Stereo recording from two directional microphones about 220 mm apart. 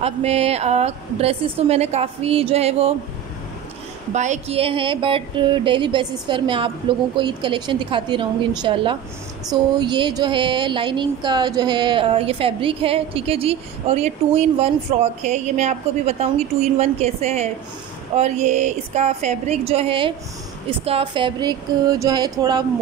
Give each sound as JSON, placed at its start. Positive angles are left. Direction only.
{"t": 0.0, "sound": "speech", "side_deg": -30}
{"t": 4.1, "sound": "a woman's voice", "side_deg": -30}